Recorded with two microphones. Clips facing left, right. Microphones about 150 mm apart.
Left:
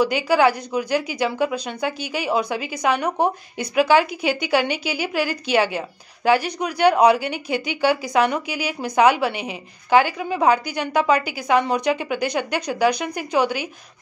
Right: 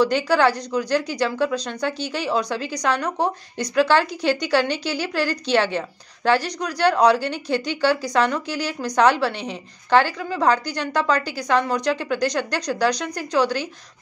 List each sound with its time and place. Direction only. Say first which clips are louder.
0.0 s a woman's voice: even; 10° left (ahead or behind)